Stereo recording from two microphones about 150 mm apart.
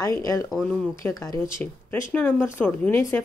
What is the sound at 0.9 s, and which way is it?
Speech, 20° left (ahead or behind).